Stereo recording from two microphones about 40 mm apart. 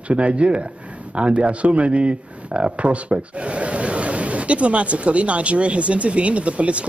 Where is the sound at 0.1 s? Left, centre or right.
Right.